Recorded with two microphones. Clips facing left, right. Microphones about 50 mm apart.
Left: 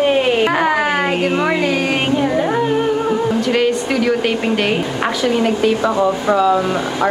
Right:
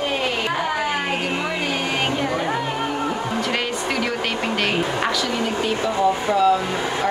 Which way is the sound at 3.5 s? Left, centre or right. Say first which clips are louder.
Left 7 dB; centre.